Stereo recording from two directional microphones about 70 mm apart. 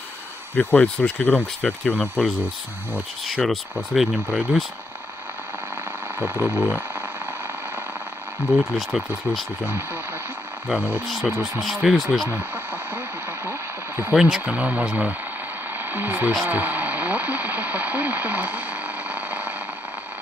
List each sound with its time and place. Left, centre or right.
0.6 s speech: centre
3.3 s speech: centre
6.1 s speech: right
8.5 s speech: centre
11.1 s speech: centre
13.5 s radio: right
14.1 s speech: centre
14.4 s speech: right
19.0 s a sound: right